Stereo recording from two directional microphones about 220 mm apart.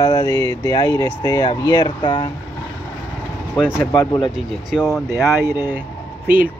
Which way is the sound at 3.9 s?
20° left (ahead or behind).